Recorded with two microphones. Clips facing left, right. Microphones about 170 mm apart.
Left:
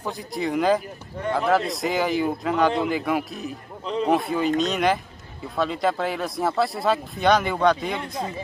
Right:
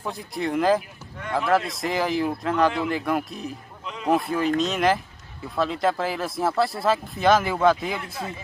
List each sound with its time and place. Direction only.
0.0 s speech: centre (ahead or behind)
3.8 s a sound: 35° left (ahead or behind)
4.1 s speech: centre (ahead or behind)